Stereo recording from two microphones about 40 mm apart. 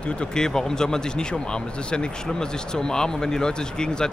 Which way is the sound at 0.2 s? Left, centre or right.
Centre.